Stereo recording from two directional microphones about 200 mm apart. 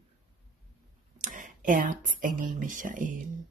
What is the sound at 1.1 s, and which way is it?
Speech, 40° right (ahead or behind).